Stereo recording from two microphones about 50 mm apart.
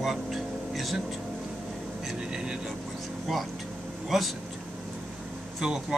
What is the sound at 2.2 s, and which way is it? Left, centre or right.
Speech, centre.